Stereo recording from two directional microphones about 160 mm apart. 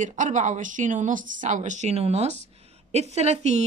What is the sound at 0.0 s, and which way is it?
Speech, 50° right (ahead or behind).